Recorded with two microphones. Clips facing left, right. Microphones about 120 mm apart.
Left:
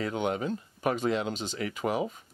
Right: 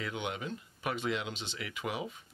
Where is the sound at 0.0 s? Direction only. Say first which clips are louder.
Left 8 dB; 40° left (ahead or behind).